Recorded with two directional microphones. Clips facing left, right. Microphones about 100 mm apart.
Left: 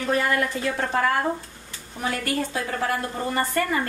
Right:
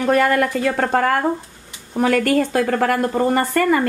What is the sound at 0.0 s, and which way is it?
A woman's voice, 60° right (ahead or behind).